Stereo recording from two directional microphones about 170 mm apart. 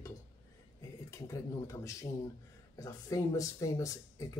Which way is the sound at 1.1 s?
20° left (ahead or behind).